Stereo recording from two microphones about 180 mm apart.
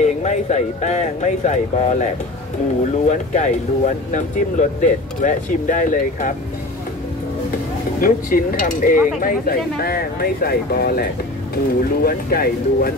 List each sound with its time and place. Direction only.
0.0 s speech: 40° left (ahead or behind)
3.1 s speech: 45° left (ahead or behind)
8.0 s speech: 50° left (ahead or behind)